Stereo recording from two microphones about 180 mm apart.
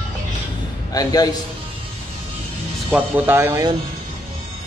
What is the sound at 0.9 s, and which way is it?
Speech, 20° left (ahead or behind).